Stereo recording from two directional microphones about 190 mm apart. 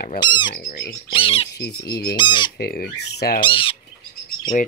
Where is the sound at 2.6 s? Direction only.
55° left (ahead or behind).